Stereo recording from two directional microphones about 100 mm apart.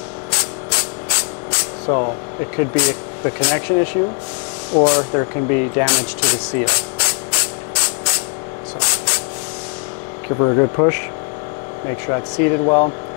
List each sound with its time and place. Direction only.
0.3 s music: 15° left (ahead or behind)
1.9 s speech: 25° left (ahead or behind)
5.2 s a sound: 20° left (ahead or behind)
10.3 s speech: 30° left (ahead or behind)
12.1 s speech: 25° left (ahead or behind)